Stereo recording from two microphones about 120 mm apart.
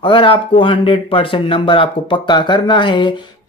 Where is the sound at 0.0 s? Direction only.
45° left (ahead or behind).